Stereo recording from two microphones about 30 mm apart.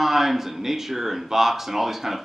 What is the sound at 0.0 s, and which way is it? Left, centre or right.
Speech, centre.